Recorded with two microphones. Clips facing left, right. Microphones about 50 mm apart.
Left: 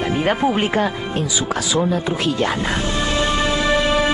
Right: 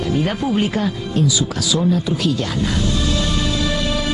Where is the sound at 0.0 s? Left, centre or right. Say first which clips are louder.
Left 2 dB; left.